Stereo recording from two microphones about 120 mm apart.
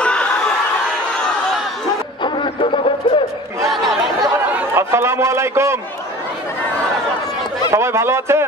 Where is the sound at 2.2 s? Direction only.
40° left (ahead or behind).